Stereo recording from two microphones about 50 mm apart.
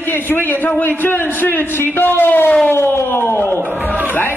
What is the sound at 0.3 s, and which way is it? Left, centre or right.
A man's voice, left.